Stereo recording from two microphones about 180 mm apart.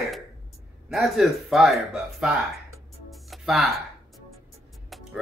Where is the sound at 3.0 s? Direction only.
Centre (ahead or behind).